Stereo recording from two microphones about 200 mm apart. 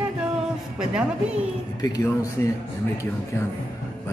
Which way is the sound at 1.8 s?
20° left (ahead or behind).